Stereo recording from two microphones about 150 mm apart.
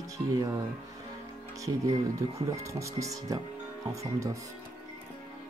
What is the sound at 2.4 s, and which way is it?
Speech, 20° right (ahead or behind).